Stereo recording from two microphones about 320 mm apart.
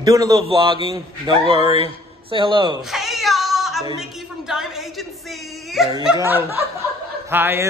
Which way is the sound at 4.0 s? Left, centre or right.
Centre.